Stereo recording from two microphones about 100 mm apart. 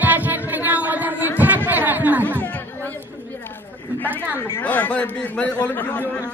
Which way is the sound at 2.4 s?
15° left (ahead or behind).